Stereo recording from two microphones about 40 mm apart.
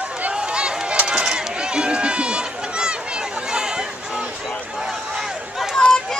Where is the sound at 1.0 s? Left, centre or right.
Centre.